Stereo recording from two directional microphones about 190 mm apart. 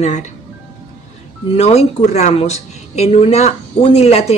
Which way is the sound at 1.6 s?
35° left (ahead or behind).